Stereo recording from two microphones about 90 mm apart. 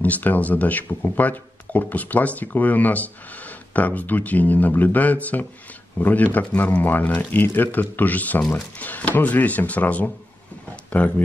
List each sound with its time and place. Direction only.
0.0 s speech: 20° left (ahead or behind)